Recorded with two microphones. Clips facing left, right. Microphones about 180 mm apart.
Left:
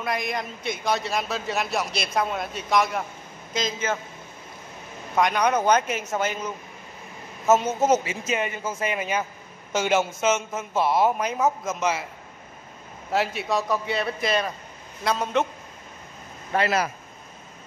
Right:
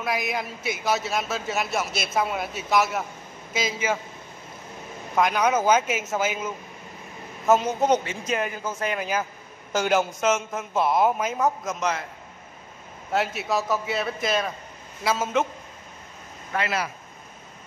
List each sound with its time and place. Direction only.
0.0 s a man's voice: 5° right (ahead or behind)
5.1 s a man's voice: centre (ahead or behind)
13.1 s a man's voice: centre (ahead or behind)
16.5 s speech: 40° left (ahead or behind)